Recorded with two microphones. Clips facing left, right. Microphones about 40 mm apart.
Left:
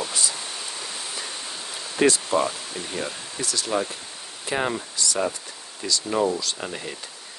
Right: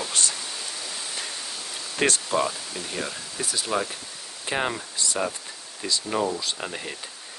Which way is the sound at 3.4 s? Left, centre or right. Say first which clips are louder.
Left 1 dB; centre.